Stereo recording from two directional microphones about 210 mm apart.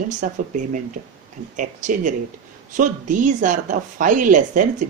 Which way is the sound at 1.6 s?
35° right (ahead or behind).